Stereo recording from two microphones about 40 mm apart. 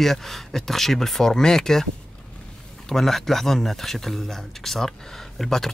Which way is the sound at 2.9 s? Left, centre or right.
Centre.